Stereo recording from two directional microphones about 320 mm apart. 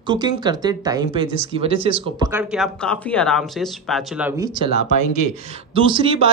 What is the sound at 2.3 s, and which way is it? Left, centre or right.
Speech, centre.